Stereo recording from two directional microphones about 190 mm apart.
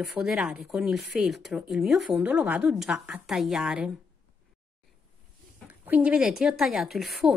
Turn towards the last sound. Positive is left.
turn(degrees=0)  # may be behind; listen again after turning